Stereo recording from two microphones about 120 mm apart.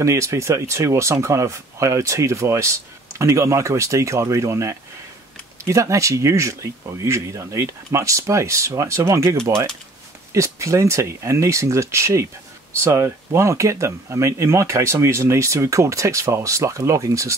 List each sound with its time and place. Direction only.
0.0 s speech: 25° right (ahead or behind)